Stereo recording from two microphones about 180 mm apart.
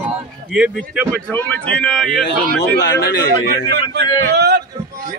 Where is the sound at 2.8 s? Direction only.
75° left (ahead or behind).